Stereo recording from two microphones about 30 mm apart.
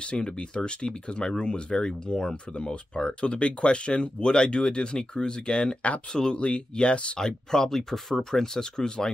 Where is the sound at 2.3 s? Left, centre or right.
Left.